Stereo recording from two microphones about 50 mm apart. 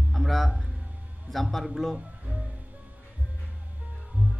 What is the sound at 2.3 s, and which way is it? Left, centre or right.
Music, right.